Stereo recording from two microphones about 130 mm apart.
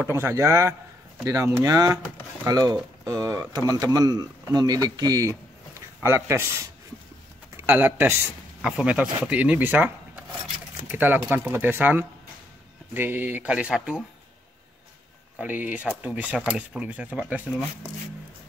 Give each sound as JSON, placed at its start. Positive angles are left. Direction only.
{"t": 0.0, "sound": "speech", "side_deg": -20}
{"t": 15.3, "sound": "speech", "side_deg": -10}